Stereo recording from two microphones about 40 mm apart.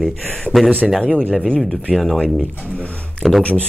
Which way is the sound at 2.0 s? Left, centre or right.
Centre.